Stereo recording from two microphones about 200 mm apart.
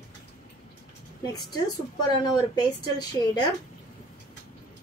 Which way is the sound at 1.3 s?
20° left (ahead or behind).